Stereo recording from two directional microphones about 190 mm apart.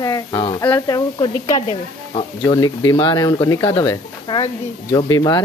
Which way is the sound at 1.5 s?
30° left (ahead or behind).